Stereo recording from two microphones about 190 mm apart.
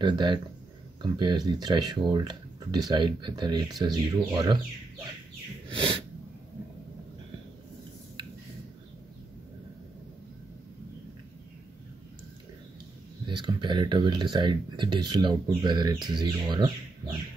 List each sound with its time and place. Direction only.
0.0 s speech: 25° right (ahead or behind)
5.7 s speech: 25° right (ahead or behind)
13.3 s speech: 25° right (ahead or behind)